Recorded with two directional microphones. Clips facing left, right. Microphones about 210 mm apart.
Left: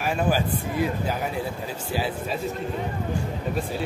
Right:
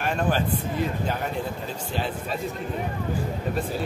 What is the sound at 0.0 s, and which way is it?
Speech, 5° left (ahead or behind).